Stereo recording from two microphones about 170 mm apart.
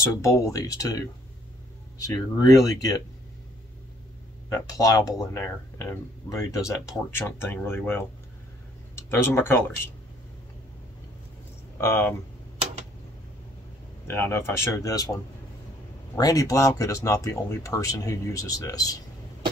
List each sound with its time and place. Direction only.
0.2 s speech: 20° left (ahead or behind)
4.5 s speech: 20° left (ahead or behind)
11.8 s speech: 15° left (ahead or behind)
14.0 s speech: 15° left (ahead or behind)
16.2 s speech: 20° left (ahead or behind)